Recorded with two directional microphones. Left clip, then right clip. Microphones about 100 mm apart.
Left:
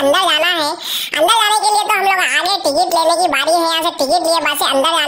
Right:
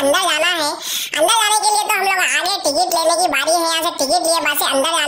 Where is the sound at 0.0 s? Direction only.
40° left (ahead or behind).